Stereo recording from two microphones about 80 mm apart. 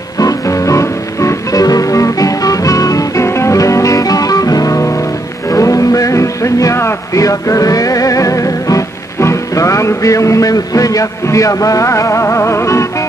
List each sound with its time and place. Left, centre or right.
0.2 s music: left
3.3 s music: left